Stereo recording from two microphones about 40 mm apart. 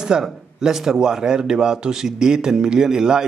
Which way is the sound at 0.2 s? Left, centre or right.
Centre.